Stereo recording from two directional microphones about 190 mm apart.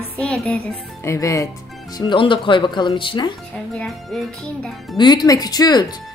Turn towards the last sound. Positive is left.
turn(degrees=20)  # may be behind; listen again after turning